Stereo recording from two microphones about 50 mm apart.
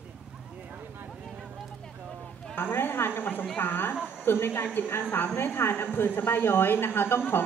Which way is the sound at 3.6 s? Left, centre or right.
Left.